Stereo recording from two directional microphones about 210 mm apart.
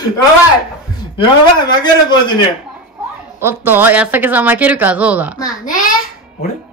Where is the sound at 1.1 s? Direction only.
20° left (ahead or behind).